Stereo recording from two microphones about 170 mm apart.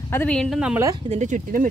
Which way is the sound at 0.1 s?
10° left (ahead or behind).